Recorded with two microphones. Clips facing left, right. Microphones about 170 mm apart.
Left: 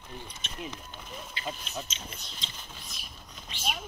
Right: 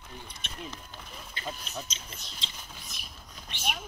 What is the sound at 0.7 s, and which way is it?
Speech, centre (ahead or behind).